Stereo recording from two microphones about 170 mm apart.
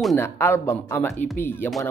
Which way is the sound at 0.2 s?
15° left (ahead or behind).